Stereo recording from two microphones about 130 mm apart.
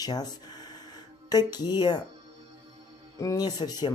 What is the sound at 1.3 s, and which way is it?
Speech, 30° left (ahead or behind).